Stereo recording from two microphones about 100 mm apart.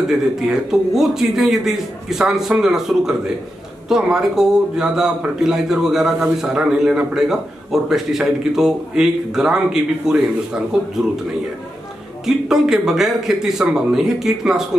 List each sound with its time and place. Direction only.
0.1 s a man's voice: 5° right (ahead or behind)
12.3 s a man's voice: 5° right (ahead or behind)